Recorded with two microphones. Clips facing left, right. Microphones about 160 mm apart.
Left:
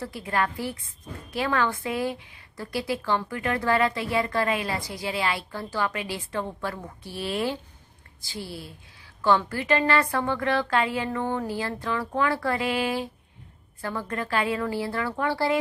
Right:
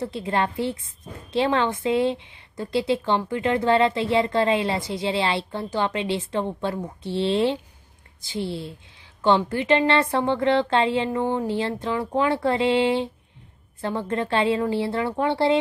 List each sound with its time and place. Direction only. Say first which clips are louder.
0.0 s a woman's voice: right 3 dB; 25° right (ahead or behind)